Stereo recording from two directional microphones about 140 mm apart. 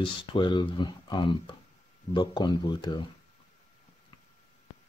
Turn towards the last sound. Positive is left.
turn(degrees=30)  # may be behind; listen again after turning